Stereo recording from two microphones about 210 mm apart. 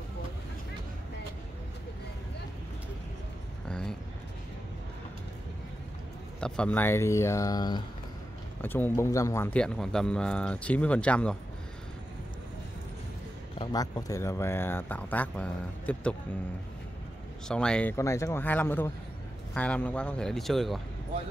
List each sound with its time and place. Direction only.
3.6 s a sound: 5° left (ahead or behind)
6.4 s speech: 5° left (ahead or behind)
8.5 s speech: 10° left (ahead or behind)
13.6 s speech: 20° left (ahead or behind)
17.5 s speech: 5° left (ahead or behind)